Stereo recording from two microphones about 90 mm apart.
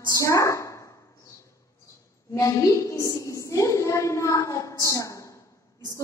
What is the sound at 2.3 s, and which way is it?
A woman's voice, 35° left (ahead or behind).